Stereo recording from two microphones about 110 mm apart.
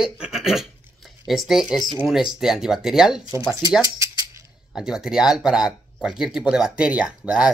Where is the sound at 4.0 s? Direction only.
25° right (ahead or behind).